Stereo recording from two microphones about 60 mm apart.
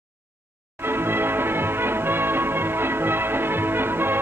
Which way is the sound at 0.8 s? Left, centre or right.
Right.